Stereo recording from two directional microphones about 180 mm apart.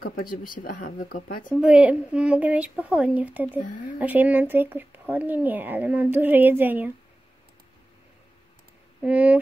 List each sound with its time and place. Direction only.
0.0 s speech: 55° left (ahead or behind)
1.5 s speech: 5° right (ahead or behind)
9.0 s speech: 10° right (ahead or behind)